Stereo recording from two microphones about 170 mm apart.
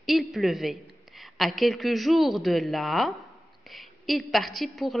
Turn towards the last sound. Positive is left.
turn(degrees=0)  # may be behind; listen again after turning